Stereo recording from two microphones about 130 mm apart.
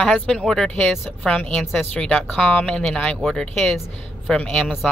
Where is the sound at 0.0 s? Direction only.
5° left (ahead or behind).